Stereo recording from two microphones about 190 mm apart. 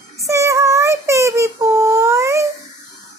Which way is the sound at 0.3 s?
15° right (ahead or behind).